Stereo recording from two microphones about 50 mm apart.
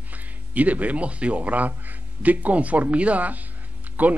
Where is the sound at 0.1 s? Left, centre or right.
Right.